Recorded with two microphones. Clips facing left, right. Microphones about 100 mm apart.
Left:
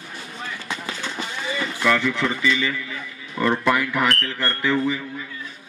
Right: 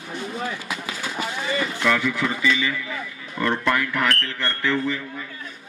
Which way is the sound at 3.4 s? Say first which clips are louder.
Left 2 dB; 5° left (ahead or behind).